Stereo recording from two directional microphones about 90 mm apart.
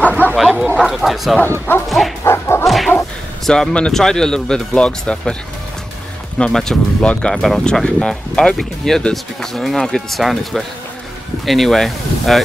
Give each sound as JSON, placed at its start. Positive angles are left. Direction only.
{"t": 0.4, "sound": "speech", "side_deg": 0}
{"t": 1.9, "sound": "bow-wow", "side_deg": 0}
{"t": 2.2, "sound": "bow-wow", "side_deg": 30}
{"t": 2.6, "sound": "whip", "side_deg": 0}
{"t": 3.4, "sound": "speech", "side_deg": 5}
{"t": 6.3, "sound": "speech", "side_deg": 10}